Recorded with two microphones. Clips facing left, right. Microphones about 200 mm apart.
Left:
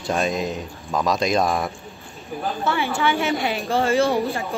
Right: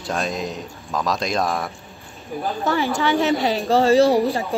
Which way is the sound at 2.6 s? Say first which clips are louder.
Right 2 dB; 40° right (ahead or behind).